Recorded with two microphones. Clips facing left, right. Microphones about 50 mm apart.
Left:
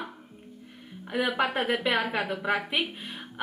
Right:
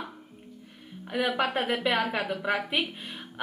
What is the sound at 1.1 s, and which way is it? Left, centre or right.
A woman's voice, centre.